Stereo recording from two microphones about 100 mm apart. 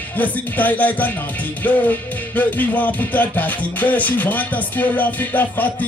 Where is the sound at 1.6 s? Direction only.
15° left (ahead or behind).